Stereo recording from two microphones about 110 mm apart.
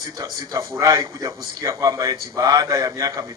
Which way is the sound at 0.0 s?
30° right (ahead or behind).